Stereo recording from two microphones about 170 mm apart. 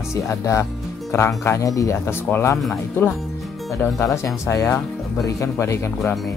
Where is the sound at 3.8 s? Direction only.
15° left (ahead or behind).